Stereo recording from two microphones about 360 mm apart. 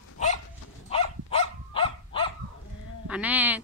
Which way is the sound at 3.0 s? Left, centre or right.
Centre.